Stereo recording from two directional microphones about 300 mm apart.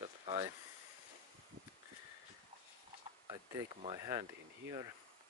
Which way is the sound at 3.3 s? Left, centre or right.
Centre.